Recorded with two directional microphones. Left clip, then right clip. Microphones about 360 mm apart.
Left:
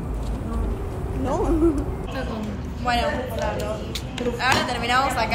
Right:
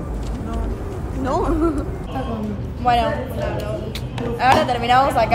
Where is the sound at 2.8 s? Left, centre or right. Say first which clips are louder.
Right 5 dB; centre.